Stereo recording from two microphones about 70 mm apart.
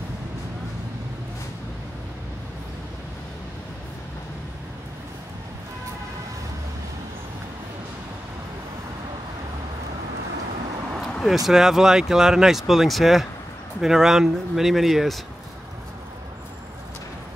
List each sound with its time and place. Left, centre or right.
11.2 s speech: centre